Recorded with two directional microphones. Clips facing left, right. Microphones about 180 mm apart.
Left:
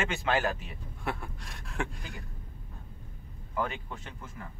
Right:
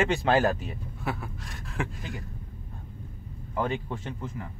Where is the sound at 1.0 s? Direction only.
Centre (ahead or behind).